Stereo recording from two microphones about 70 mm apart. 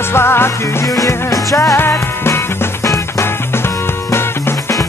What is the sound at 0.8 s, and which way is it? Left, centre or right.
Music, left.